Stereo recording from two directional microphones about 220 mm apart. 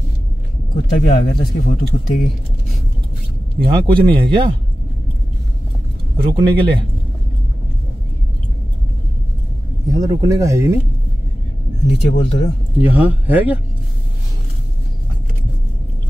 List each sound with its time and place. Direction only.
1.0 s speech: 35° left (ahead or behind)
3.5 s speech: 25° right (ahead or behind)
6.1 s speech: 20° right (ahead or behind)
9.9 s speech: 15° right (ahead or behind)
12.0 s speech: 30° left (ahead or behind)
12.8 s speech: 10° right (ahead or behind)